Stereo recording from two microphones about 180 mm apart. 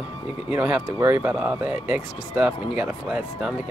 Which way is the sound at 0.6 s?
5° right (ahead or behind).